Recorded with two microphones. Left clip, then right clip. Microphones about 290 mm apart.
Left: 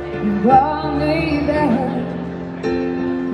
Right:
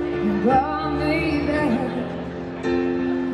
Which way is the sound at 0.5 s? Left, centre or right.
Centre.